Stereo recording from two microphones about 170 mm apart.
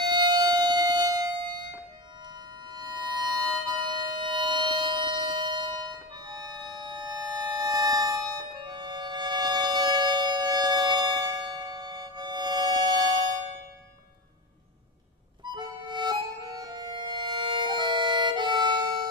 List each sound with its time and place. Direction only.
0.0 s music: 25° right (ahead or behind)
15.4 s music: 25° right (ahead or behind)